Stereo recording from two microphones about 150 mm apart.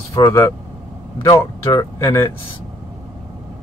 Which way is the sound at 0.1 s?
20° left (ahead or behind).